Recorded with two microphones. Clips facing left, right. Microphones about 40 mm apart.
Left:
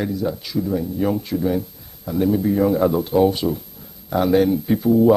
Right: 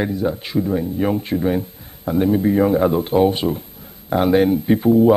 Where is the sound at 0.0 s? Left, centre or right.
Right.